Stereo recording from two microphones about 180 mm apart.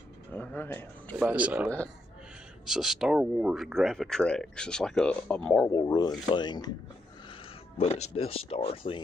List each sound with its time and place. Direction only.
0.3 s speech: 10° left (ahead or behind)
1.1 s speech: 5° right (ahead or behind)
5.7 s speech: 20° left (ahead or behind)
7.8 s speech: 35° left (ahead or behind)